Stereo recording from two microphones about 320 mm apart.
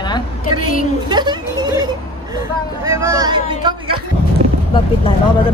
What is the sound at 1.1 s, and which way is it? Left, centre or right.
Speech, centre.